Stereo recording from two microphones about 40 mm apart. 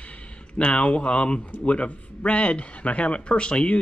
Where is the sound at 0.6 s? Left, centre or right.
Left.